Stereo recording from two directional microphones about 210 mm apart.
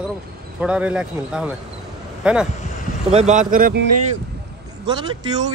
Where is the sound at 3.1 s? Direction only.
35° right (ahead or behind).